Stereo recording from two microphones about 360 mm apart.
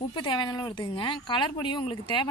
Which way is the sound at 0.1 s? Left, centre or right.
Centre.